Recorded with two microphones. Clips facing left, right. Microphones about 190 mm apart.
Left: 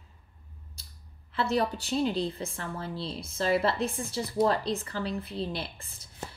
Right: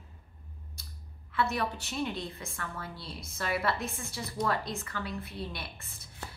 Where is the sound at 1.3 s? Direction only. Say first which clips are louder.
Left 4 dB; 30° left (ahead or behind).